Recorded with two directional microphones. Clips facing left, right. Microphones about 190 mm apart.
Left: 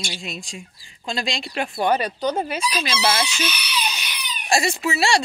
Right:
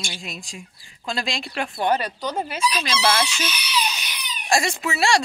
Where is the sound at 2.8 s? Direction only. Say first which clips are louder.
Even; 5° left (ahead or behind).